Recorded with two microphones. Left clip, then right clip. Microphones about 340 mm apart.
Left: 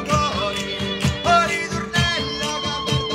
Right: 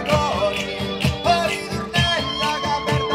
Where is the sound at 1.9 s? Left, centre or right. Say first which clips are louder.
Right 2 dB; centre.